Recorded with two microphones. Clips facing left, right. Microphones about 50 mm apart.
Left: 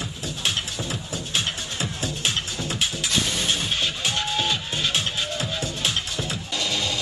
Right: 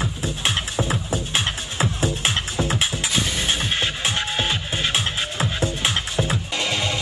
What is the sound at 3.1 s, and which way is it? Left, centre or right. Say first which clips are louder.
Music: right 1 dB; centre.